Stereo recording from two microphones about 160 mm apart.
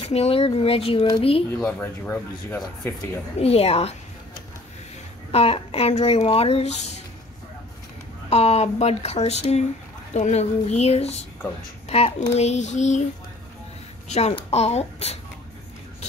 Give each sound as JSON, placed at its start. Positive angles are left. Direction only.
{"t": 0.0, "sound": "speech", "side_deg": 40}
{"t": 1.8, "sound": "speech", "side_deg": 15}
{"t": 3.3, "sound": "speech", "side_deg": 40}
{"t": 5.3, "sound": "speech", "side_deg": 40}
{"t": 8.3, "sound": "a woman's voice", "side_deg": 40}
{"t": 14.0, "sound": "speech", "side_deg": 45}